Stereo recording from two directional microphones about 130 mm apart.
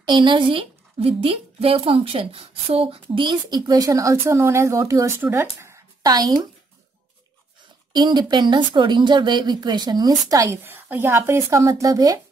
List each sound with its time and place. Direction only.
0.0 s a woman's voice: 35° right (ahead or behind)
7.9 s a woman's voice: 35° right (ahead or behind)